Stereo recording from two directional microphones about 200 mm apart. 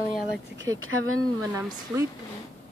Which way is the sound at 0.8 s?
90° right.